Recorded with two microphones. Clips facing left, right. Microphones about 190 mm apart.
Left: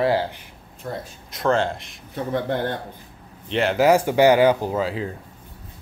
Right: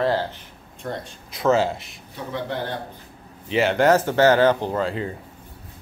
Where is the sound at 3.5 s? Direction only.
Centre (ahead or behind).